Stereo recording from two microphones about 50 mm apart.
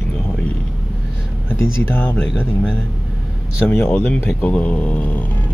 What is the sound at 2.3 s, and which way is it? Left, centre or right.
Speech, centre.